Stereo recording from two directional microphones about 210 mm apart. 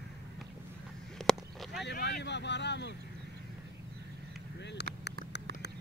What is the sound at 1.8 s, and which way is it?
Vehicle, 55° left (ahead or behind).